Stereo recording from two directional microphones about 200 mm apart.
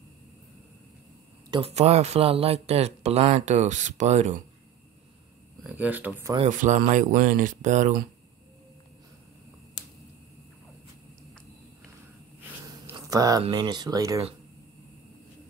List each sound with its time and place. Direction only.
1.5 s speech: 30° right (ahead or behind)
5.6 s speech: 10° right (ahead or behind)
6.3 s speech: 40° right (ahead or behind)
12.6 s a sound: 15° right (ahead or behind)
13.4 s speech: 20° right (ahead or behind)